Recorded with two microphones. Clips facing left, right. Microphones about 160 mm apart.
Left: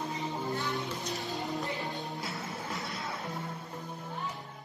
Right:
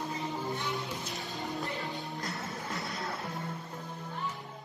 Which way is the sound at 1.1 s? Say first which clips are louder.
Left 4 dB; centre (ahead or behind).